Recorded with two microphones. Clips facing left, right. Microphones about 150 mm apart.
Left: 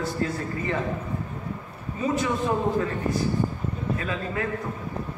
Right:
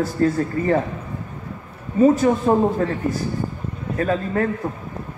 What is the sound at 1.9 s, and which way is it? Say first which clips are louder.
Speech: right 10 dB; 45° right (ahead or behind).